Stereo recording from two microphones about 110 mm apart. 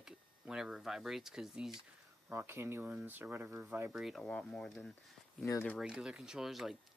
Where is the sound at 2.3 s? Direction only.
20° right (ahead or behind).